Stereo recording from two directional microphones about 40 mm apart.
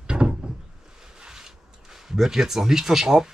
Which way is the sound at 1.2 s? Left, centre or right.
Centre.